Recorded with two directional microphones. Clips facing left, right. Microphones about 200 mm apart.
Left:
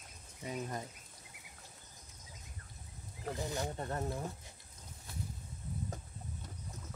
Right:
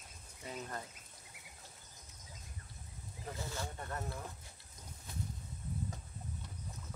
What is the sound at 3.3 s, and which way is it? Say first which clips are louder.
Speech: left 5 dB; 20° left (ahead or behind).